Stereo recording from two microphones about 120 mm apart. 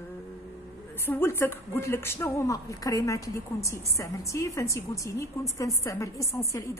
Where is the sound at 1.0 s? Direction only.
20° left (ahead or behind).